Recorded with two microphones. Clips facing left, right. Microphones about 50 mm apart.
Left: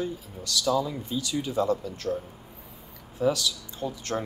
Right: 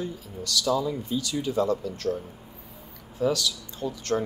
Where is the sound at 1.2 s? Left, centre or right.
Left.